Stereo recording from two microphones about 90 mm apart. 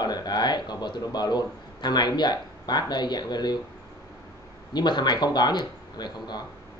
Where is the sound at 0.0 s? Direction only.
50° left (ahead or behind).